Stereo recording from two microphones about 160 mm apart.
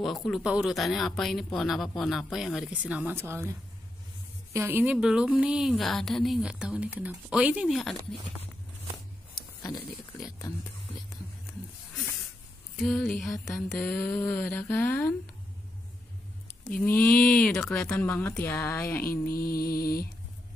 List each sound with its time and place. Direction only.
0.0 s speech: centre (ahead or behind); by 3.4 s 15° right (ahead or behind)
4.6 s a woman's voice: 15° right (ahead or behind); by 8.2 s 5° left (ahead or behind)
9.3 s a sound: 25° left (ahead or behind)
10.1 s speech: 20° left (ahead or behind)
12.7 s speech: 5° left (ahead or behind)
16.8 s speech: 10° left (ahead or behind)
19.2 s mantra: 70° left (ahead or behind)